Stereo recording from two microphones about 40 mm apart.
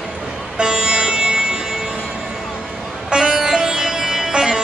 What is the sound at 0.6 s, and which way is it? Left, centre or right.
Music, right.